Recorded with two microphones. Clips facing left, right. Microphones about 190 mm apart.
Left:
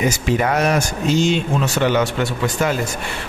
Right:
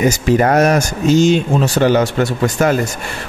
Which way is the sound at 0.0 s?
45° right (ahead or behind).